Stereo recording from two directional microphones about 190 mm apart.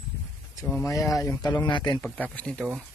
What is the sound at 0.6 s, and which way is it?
Speech, 15° left (ahead or behind).